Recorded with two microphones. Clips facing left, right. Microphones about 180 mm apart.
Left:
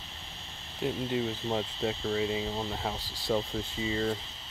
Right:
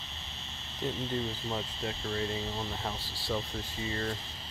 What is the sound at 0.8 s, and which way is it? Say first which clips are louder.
Speech: left 3 dB; 10° left (ahead or behind).